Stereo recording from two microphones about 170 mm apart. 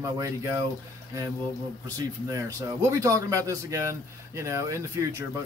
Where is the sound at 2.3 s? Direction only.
20° right (ahead or behind).